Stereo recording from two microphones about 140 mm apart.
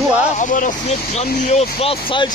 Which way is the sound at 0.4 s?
70° left (ahead or behind).